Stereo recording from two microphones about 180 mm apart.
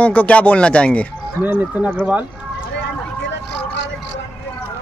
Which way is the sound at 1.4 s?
10° right (ahead or behind).